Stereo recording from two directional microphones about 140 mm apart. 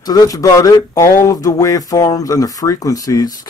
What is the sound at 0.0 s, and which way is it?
Speech, 25° left (ahead or behind).